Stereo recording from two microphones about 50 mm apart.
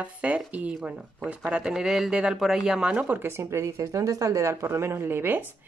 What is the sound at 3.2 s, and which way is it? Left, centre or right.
Speech, right.